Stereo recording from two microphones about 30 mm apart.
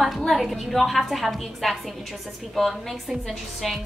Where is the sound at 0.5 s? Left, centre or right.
Centre.